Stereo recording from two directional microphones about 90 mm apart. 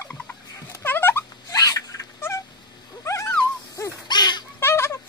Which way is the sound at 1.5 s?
40° left (ahead or behind).